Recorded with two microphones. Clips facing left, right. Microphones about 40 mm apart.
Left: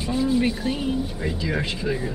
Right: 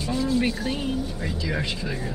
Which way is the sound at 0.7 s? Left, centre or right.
Centre.